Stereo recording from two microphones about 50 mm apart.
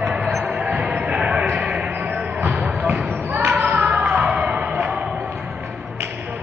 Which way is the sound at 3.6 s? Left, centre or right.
Right.